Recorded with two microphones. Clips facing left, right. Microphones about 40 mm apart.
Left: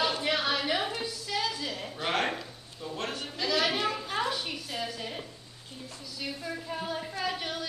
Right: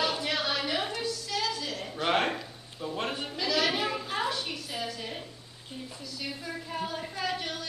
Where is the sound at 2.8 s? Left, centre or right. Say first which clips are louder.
Right 3 dB; centre.